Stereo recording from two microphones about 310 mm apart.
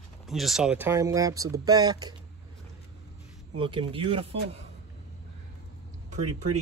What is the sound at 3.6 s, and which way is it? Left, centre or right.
Speech, centre.